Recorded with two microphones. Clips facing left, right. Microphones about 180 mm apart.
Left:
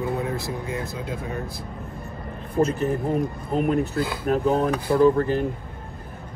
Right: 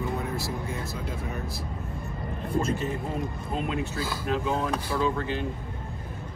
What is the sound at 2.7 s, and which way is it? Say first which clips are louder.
Speech: left 7 dB; 60° left (ahead or behind).